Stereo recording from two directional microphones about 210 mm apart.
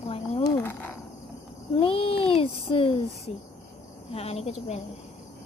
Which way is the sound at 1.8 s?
25° left (ahead or behind).